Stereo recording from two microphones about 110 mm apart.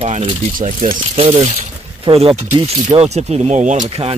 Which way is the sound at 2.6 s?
80° right.